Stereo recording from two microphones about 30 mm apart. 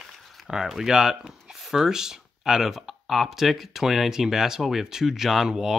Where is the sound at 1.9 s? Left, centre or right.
Centre.